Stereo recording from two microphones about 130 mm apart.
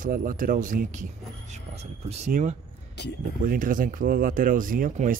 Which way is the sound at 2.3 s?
85° right.